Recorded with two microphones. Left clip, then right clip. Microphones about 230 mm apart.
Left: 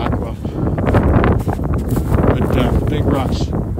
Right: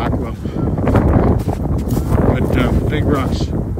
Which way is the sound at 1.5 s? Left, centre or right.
Right.